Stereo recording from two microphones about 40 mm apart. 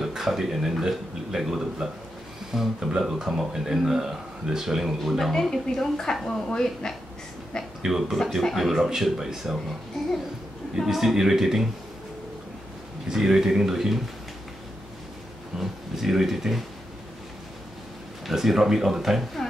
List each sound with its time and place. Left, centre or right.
0.0 s speech: centre
5.3 s a woman's voice: centre
7.8 s speech: centre
8.4 s speech: centre
9.9 s a sound: centre
10.9 s speech: centre
13.1 s speech: centre
15.5 s a sound: centre
18.2 s speech: centre